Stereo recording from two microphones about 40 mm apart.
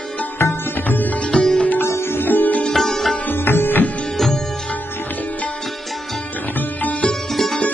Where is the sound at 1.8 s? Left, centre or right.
Left.